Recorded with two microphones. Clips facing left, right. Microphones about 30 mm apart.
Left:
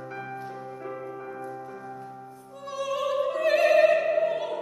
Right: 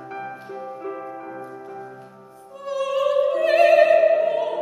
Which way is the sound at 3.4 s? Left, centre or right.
Right.